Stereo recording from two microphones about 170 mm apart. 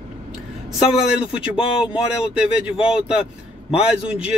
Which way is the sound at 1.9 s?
5° right (ahead or behind).